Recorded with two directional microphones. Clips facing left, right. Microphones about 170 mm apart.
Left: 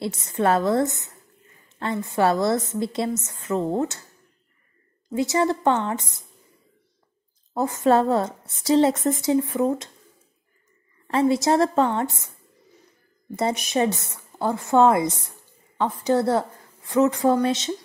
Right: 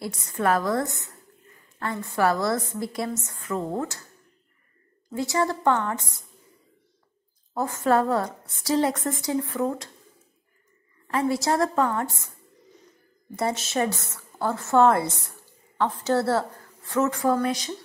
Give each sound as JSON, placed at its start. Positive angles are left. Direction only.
{"t": 0.0, "sound": "a woman's voice", "side_deg": 25}
{"t": 5.1, "sound": "a woman's voice", "side_deg": 20}
{"t": 7.5, "sound": "a woman's voice", "side_deg": 20}
{"t": 11.1, "sound": "a woman's voice", "side_deg": 25}
{"t": 13.4, "sound": "a woman's voice", "side_deg": 20}